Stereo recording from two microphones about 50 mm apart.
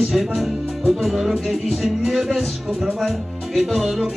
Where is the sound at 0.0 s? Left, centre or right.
Centre.